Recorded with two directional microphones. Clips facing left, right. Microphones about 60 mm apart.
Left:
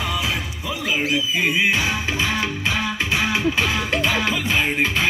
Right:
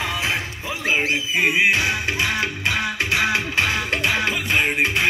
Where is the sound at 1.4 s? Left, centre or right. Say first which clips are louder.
Right 3 dB; centre.